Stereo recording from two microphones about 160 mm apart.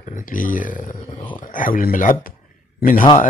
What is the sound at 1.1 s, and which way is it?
Speech, 30° left (ahead or behind).